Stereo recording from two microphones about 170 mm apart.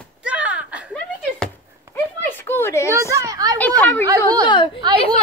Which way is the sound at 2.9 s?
20° right (ahead or behind).